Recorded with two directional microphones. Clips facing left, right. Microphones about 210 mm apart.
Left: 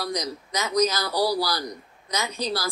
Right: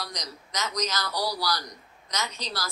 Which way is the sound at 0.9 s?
30° left (ahead or behind).